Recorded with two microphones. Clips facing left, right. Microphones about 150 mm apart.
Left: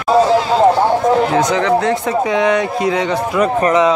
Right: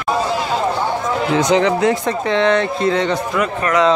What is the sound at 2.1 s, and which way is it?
Speech, 10° left (ahead or behind).